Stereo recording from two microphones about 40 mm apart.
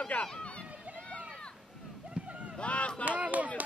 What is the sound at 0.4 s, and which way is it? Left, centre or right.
Speech, left.